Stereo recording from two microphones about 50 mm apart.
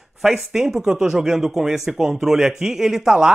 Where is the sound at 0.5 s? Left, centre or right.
Centre.